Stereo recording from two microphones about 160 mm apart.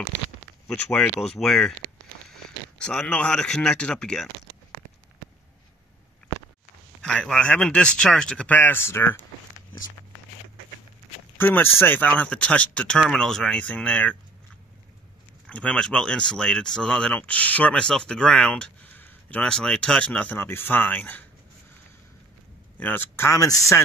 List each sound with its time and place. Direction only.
0.7 s speech: 10° left (ahead or behind)
6.3 s a sound: 45° right (ahead or behind)
7.0 s speech: 5° left (ahead or behind)
11.3 s speech: 15° left (ahead or behind)
15.4 s speech: 5° left (ahead or behind)
22.8 s speech: 10° left (ahead or behind)